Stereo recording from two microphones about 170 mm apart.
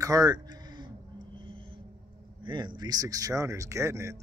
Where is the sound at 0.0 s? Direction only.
20° right (ahead or behind).